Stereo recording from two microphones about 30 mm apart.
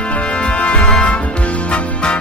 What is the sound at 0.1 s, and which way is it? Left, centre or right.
Music, left.